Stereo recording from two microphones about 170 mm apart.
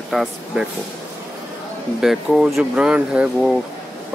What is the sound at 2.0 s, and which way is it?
Speech, centre (ahead or behind).